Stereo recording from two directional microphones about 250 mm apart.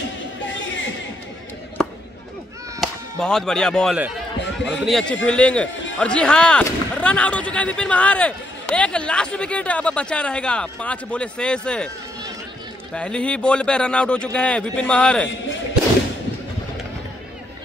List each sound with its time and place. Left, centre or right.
0.5 s chatter: left
1.8 s chop: centre
2.8 s speech: centre
12.9 s speech: centre
15.2 s a sound: left